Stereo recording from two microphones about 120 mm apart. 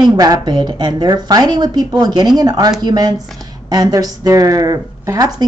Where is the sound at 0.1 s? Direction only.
35° right (ahead or behind).